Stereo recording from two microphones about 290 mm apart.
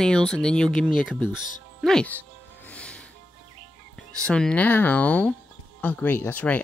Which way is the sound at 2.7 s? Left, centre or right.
Centre.